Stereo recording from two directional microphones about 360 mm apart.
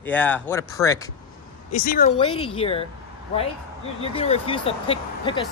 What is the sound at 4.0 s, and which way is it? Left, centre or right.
Speech, centre.